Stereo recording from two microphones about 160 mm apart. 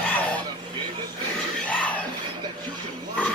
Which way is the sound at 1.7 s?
10° left (ahead or behind).